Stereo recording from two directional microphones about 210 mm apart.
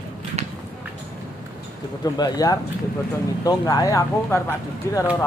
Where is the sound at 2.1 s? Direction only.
20° left (ahead or behind).